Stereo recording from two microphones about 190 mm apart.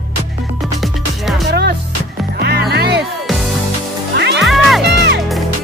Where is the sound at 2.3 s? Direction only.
55° right (ahead or behind).